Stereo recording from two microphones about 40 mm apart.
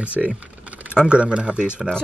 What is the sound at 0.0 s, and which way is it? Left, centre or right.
Speech, right.